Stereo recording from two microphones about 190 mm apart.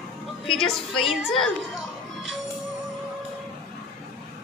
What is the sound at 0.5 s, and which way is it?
Speech, centre (ahead or behind).